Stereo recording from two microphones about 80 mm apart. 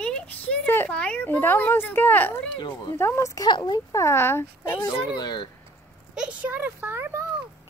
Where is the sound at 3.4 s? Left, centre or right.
Left.